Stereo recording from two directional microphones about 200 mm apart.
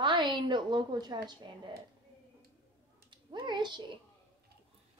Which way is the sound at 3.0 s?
25° right (ahead or behind).